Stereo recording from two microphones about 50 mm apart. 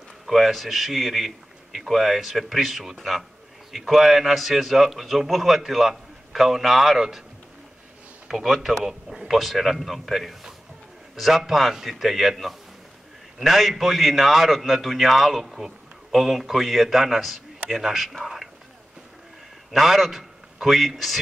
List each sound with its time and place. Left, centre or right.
0.3 s a man's voice: centre
8.3 s a man's voice: centre
18.2 s whispering: centre
19.7 s a man's voice: centre